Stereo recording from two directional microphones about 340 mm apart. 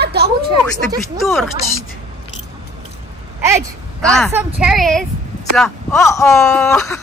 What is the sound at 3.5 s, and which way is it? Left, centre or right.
A woman's voice, centre.